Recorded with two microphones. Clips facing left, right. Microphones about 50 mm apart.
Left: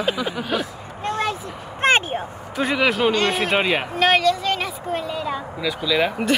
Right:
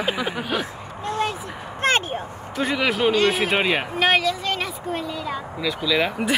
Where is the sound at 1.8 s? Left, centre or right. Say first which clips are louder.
Left 3 dB; left.